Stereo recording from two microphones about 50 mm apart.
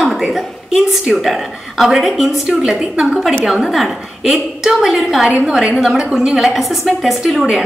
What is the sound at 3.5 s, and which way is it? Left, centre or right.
A woman's voice, centre.